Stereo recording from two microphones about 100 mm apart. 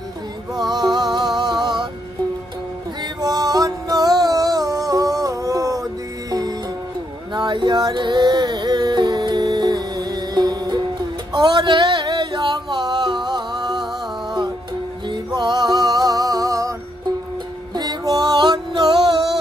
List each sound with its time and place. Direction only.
0.6 s music: 45° right (ahead or behind)
3.2 s music: 40° right (ahead or behind)
7.3 s music: 50° right (ahead or behind)
11.3 s a sound: 50° right (ahead or behind)
15.0 s music: 50° right (ahead or behind)
17.7 s music: 45° right (ahead or behind)